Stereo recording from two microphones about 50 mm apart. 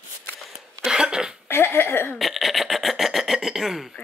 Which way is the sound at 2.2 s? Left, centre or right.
Centre.